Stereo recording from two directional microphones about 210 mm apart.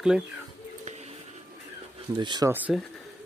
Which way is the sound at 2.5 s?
5° right (ahead or behind).